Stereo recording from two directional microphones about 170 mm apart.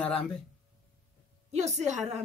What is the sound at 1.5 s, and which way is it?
Speech, 40° right (ahead or behind).